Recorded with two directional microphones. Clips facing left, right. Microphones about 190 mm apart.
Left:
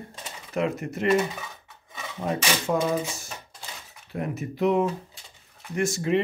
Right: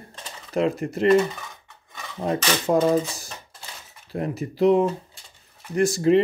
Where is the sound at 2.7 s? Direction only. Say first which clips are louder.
Right 7 dB; 35° right (ahead or behind).